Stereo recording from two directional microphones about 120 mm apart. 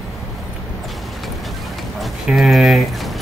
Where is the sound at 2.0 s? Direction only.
Centre (ahead or behind).